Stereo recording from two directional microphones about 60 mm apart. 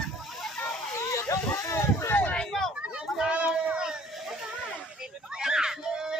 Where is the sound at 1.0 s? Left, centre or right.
Left.